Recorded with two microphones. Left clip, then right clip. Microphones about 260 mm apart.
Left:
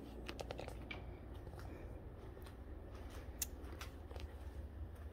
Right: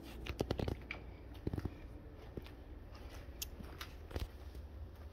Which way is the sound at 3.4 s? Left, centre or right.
Centre.